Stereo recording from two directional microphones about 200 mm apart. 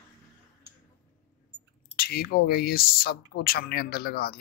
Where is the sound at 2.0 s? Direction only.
50° left (ahead or behind).